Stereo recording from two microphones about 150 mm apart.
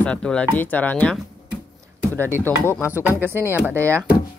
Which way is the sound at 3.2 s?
15° right (ahead or behind).